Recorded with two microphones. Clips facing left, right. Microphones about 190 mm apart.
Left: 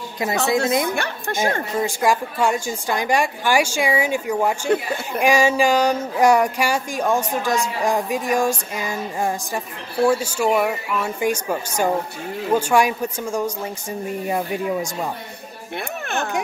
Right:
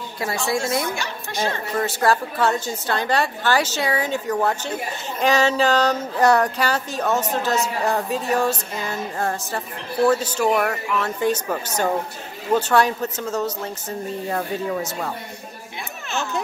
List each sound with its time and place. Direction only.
0.5 s speech: 20° left (ahead or behind)
0.9 s a woman's voice: 55° left (ahead or behind)
1.8 s speech: 10° left (ahead or behind)
16.1 s a sound: 55° left (ahead or behind)